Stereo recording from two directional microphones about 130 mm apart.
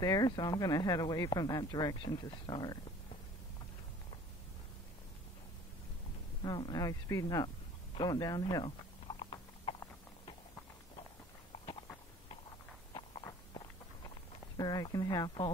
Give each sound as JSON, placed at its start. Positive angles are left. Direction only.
{"t": 0.0, "sound": "speech", "side_deg": 30}
{"t": 6.4, "sound": "speech", "side_deg": 35}
{"t": 7.9, "sound": "a sound", "side_deg": 30}
{"t": 14.6, "sound": "speech", "side_deg": 30}